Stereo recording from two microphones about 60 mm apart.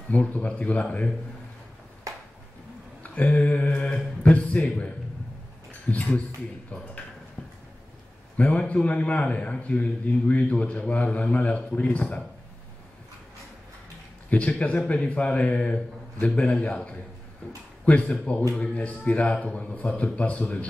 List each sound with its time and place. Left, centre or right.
0.1 s a man's voice: left
3.0 s a man's voice: left
7.4 s a sound: left
8.4 s a man's voice: left
14.6 s a man's voice: left